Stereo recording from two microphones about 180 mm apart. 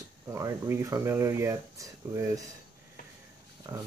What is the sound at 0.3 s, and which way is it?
Speech, 15° right (ahead or behind).